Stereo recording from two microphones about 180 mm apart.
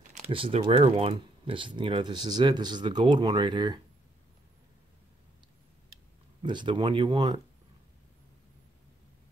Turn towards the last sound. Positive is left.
turn(degrees=-25)  # may be behind; listen again after turning